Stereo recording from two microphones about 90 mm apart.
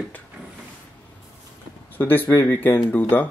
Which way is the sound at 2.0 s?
20° left (ahead or behind).